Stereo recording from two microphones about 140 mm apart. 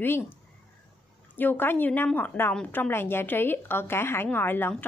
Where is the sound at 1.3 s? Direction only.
15° left (ahead or behind).